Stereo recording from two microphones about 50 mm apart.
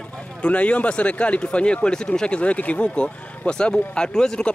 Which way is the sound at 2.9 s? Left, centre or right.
Centre.